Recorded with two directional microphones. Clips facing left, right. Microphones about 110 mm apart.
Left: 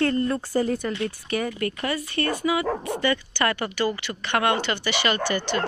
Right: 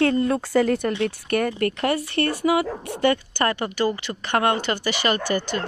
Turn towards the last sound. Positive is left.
turn(degrees=-40)  # may be behind; listen again after turning